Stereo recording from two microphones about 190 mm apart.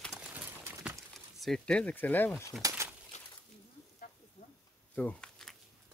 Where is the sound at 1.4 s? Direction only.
5° left (ahead or behind).